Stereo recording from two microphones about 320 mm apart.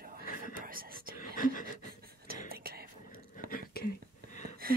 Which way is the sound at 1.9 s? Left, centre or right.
Right.